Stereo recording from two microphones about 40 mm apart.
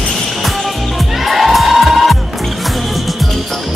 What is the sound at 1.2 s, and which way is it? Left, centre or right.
Music, centre.